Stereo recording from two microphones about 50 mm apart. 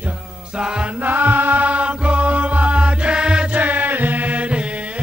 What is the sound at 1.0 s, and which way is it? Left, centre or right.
Music, right.